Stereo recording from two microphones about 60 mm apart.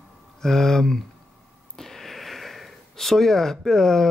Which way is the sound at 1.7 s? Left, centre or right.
Centre.